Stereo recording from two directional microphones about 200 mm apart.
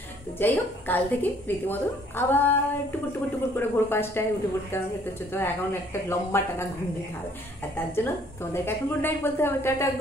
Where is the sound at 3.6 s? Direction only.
10° left (ahead or behind).